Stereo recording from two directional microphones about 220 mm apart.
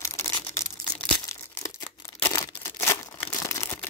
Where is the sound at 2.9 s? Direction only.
10° left (ahead or behind).